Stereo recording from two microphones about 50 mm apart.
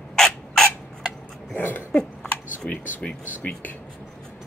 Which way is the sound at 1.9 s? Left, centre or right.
Left.